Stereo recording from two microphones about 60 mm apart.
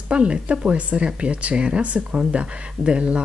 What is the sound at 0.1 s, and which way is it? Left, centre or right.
Speech, centre.